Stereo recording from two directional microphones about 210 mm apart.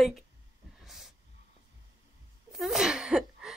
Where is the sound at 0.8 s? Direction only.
Centre (ahead or behind).